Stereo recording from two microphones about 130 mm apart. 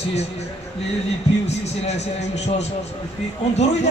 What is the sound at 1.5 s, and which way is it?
A man's voice, 55° left (ahead or behind).